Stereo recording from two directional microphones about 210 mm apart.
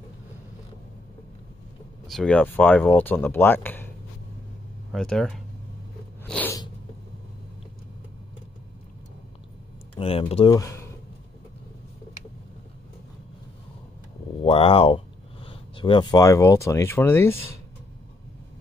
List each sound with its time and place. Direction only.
2.0 s speech: 5° left (ahead or behind)
4.9 s speech: 5° left (ahead or behind)
6.2 s sneeze: 5° left (ahead or behind)
9.9 s speech: 25° left (ahead or behind)
14.4 s speech: 25° left (ahead or behind); by 17.4 s 10° left (ahead or behind)